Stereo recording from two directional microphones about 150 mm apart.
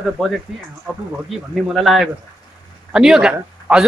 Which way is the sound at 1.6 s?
Centre (ahead or behind).